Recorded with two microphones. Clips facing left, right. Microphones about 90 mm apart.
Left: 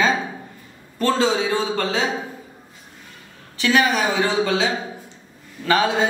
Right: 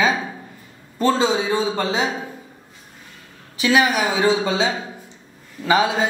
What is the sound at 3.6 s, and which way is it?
A man's voice, 10° right (ahead or behind).